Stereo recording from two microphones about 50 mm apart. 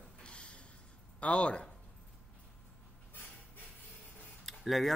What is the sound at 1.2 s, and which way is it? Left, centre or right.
Speech, left.